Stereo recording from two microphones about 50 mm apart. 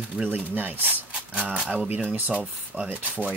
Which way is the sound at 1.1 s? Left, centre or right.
Right.